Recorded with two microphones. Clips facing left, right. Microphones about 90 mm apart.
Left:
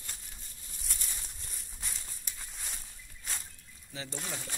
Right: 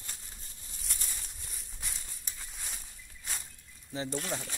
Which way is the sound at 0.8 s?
Centre (ahead or behind).